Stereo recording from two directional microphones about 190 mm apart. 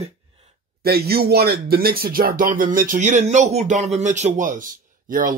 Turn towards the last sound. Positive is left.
turn(degrees=-45)  # may be behind; listen again after turning